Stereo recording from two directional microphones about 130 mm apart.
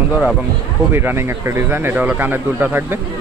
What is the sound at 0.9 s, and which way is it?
Speech, 15° right (ahead or behind).